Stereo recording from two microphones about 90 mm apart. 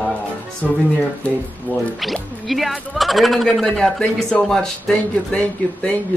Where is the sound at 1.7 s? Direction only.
20° left (ahead or behind).